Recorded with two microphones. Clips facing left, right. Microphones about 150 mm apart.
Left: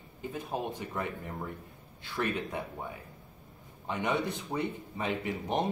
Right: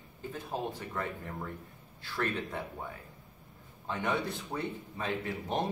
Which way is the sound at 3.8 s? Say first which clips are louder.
Left 2 dB; 15° left (ahead or behind).